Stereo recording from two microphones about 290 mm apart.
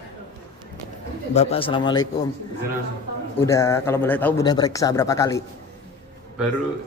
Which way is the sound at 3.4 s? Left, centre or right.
Centre.